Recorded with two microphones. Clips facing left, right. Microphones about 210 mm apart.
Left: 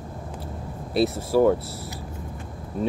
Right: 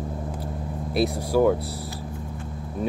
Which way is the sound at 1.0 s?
Centre (ahead or behind).